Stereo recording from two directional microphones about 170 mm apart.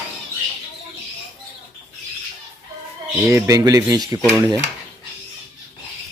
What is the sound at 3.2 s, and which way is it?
Dishes, 15° right (ahead or behind).